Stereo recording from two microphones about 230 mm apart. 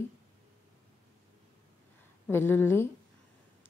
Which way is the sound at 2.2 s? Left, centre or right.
Centre.